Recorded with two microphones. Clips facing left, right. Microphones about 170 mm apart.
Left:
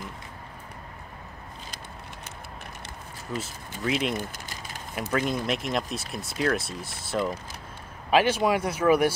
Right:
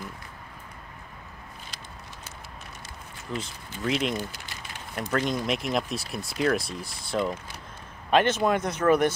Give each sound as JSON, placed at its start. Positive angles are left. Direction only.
{"t": 3.3, "sound": "speech", "side_deg": 5}
{"t": 4.2, "sound": "a sound", "side_deg": 45}
{"t": 5.1, "sound": "speech", "side_deg": 5}